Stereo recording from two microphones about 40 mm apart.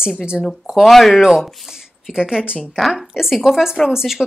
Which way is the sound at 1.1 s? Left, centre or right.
Centre.